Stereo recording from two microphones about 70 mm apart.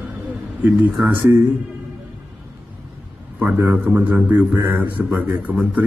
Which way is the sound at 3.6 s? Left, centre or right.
Right.